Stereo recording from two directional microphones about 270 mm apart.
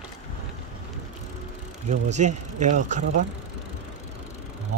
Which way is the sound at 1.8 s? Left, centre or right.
Right.